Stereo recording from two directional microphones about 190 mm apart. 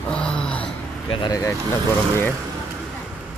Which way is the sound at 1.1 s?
20° left (ahead or behind).